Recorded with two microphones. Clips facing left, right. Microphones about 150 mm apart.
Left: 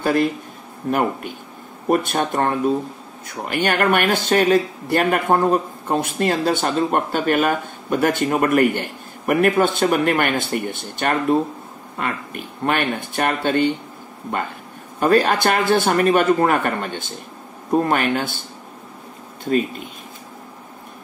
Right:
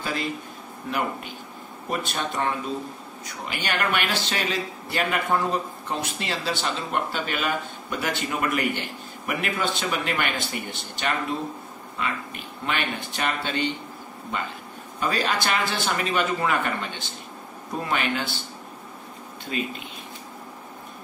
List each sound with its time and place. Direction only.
0.0 s a man's voice: 55° left (ahead or behind)